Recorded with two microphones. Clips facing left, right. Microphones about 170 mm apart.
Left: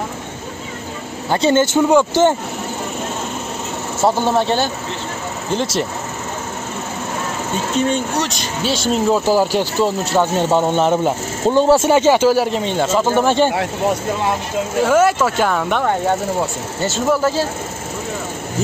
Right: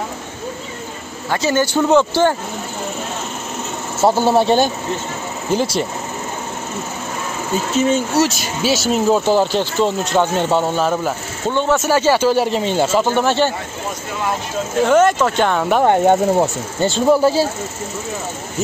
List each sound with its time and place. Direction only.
1.3 s speech: 25° left (ahead or behind)
4.0 s speech: 5° right (ahead or behind)
5.6 s speech: centre (ahead or behind)
7.7 s speech: 5° right (ahead or behind)
10.6 s speech: 20° left (ahead or behind)
12.4 s speech: centre (ahead or behind)
13.0 s speech: 15° left (ahead or behind)
13.5 s speech: 75° left (ahead or behind)
14.9 s speech: 5° left (ahead or behind)
15.7 s speech: 25° right (ahead or behind)
17.1 s speech: 10° right (ahead or behind)